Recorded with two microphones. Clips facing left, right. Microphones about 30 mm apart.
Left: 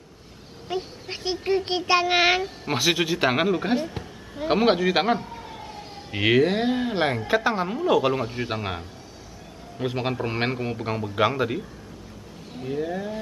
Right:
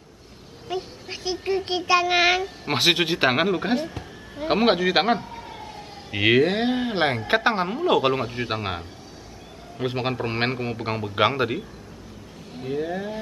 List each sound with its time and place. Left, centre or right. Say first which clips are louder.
0.7 s a woman's voice: even; centre
1.1 s a child's voice: left 1 dB; centre
2.7 s a man's voice: right 2 dB; right
3.3 s speech: even; centre
5.4 s emergency vehicle: right 1 dB; centre
6.1 s a man's voice: right 1 dB; centre; by 7.6 s right
7.6 s a man's voice: right 1 dB; centre
12.5 s speech: right 1 dB; centre